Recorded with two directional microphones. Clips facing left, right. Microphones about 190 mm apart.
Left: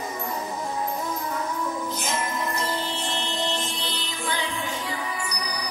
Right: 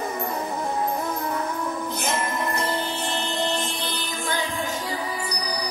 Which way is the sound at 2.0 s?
60° right (ahead or behind).